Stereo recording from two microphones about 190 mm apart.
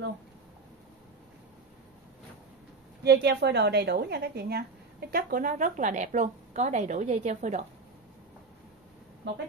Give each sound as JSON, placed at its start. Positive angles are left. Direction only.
{"t": 3.0, "sound": "a woman's voice", "side_deg": -60}
{"t": 9.2, "sound": "a woman's voice", "side_deg": -70}